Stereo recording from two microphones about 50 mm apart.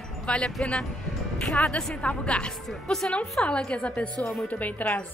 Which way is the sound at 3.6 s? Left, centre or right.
Left.